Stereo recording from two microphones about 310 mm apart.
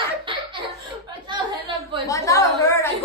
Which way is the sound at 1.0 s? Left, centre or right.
Centre.